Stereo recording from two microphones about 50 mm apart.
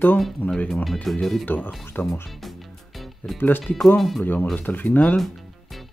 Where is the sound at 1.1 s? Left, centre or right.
Centre.